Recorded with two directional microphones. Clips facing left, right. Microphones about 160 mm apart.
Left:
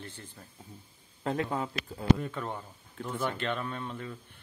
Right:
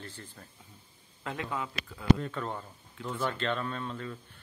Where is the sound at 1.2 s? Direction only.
35° left (ahead or behind).